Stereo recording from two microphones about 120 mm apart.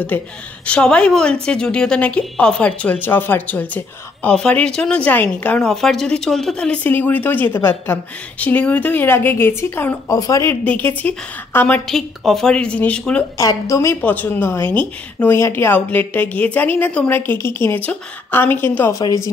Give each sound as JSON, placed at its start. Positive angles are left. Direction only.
{"t": 0.1, "sound": "a woman's voice", "side_deg": 15}
{"t": 10.0, "sound": "speech", "side_deg": 30}
{"t": 10.6, "sound": "a woman's voice", "side_deg": 10}
{"t": 11.9, "sound": "a woman's voice", "side_deg": 0}
{"t": 13.4, "sound": "a woman's voice", "side_deg": 30}